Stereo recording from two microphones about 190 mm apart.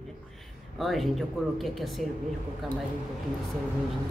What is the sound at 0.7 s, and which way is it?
A man's voice, centre (ahead or behind).